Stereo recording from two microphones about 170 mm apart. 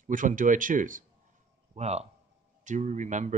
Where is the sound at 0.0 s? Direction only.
50° right (ahead or behind).